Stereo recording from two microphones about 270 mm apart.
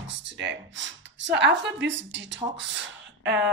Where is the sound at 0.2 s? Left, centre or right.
Right.